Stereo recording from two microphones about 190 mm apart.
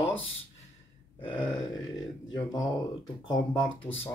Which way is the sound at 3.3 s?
15° left (ahead or behind).